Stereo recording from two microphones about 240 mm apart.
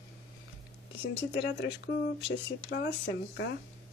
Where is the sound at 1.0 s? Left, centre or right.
Left.